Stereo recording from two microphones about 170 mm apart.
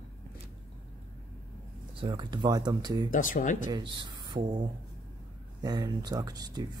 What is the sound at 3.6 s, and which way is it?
Speech, 25° right (ahead or behind).